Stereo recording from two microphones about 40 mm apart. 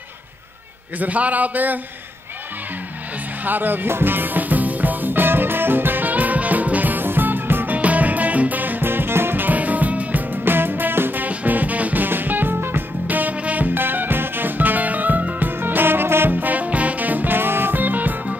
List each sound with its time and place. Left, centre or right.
0.9 s a man's voice: right
3.4 s a man's voice: right
3.9 s music: right
7.7 s music: right
9.5 s music: right
10.4 s music: right
11.2 s music: right
13.0 s music: right
13.7 s music: right
15.5 s music: right
16.3 s music: right
17.4 s music: right